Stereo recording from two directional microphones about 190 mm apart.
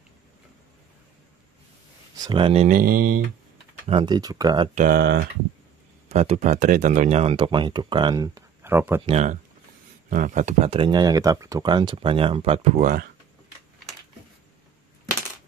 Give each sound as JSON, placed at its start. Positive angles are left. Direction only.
{"t": 2.2, "sound": "speech", "side_deg": -25}
{"t": 2.7, "sound": "speech", "side_deg": -50}
{"t": 3.9, "sound": "speech", "side_deg": -25}
{"t": 4.7, "sound": "speech", "side_deg": -45}
{"t": 6.0, "sound": "speech", "side_deg": -35}
{"t": 9.0, "sound": "speech", "side_deg": -35}